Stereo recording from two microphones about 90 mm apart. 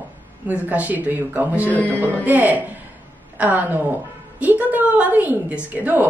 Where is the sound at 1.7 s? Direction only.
15° left (ahead or behind).